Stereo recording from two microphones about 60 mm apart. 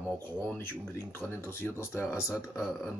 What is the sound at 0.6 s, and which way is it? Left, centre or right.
Speech, left.